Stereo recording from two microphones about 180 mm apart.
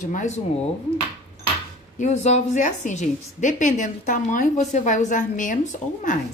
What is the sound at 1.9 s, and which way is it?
A woman's voice, 40° left (ahead or behind).